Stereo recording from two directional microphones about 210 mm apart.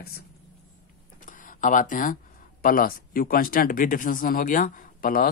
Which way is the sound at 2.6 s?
40° left (ahead or behind).